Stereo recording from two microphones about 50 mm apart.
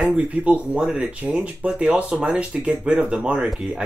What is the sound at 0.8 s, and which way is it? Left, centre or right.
Speech, centre.